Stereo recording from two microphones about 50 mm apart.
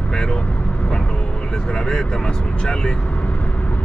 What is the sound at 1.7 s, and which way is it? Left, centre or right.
Speech, centre.